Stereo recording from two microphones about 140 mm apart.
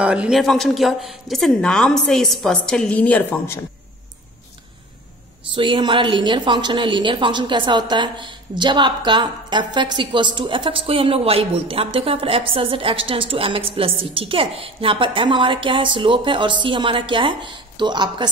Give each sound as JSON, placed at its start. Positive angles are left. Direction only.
{"t": 0.0, "sound": "a woman's voice", "side_deg": -5}
{"t": 5.5, "sound": "a woman's voice", "side_deg": -35}